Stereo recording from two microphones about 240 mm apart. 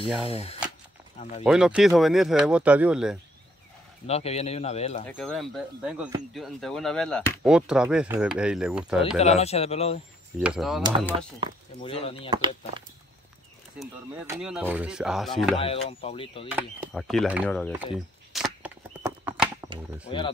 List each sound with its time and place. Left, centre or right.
0.3 s speech: left
1.4 s speech: centre
4.1 s speech: left
5.0 s speech: centre
9.2 s speech: left
10.4 s speech: centre
11.8 s speech: left
12.3 s speech: right
13.8 s speech: centre
15.5 s speech: left
16.4 s speech: centre
19.0 s clip-clop: centre